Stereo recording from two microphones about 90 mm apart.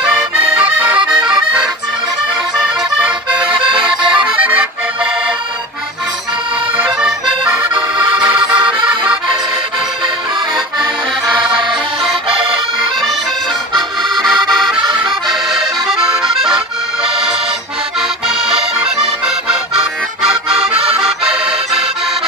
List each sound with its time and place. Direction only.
0.6 s accordion: 20° right (ahead or behind)
3.5 s music: 70° right (ahead or behind)
4.4 s accordion: 15° right (ahead or behind)
7.0 s accordion: 10° right (ahead or behind)
8.4 s accordion: 60° right (ahead or behind)
11.3 s accordion: 65° right (ahead or behind); by 12.5 s 85° right
14.0 s accordion: 5° left (ahead or behind)
18.4 s accordion: 5° right (ahead or behind)